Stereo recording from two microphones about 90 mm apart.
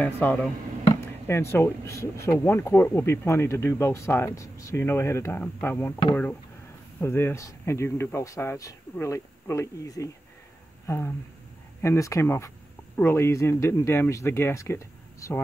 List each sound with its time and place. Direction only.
0.0 s speech: 20° left (ahead or behind)
7.0 s speech: 25° left (ahead or behind)